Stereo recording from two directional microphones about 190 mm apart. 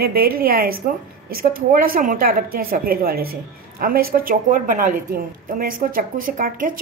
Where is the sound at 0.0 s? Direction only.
50° right (ahead or behind).